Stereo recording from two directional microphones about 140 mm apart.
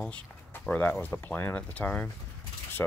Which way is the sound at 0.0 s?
10° left (ahead or behind).